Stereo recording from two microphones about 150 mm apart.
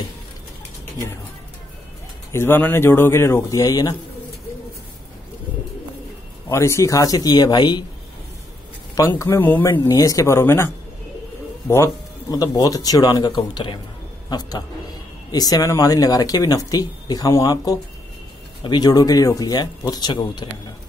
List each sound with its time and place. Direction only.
2.3 s speech: 15° left (ahead or behind)
6.5 s speech: 20° left (ahead or behind)
8.9 s speech: 20° left (ahead or behind)
9.8 s speech: 25° left (ahead or behind)
11.7 s speech: 20° left (ahead or behind)
15.3 s speech: 25° left (ahead or behind)